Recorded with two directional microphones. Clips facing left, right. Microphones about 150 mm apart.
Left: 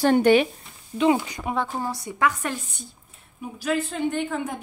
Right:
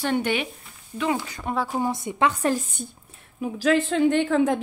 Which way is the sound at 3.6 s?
90° right.